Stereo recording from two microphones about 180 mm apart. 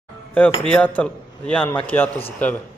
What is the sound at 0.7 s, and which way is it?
A man's voice, 5° left (ahead or behind).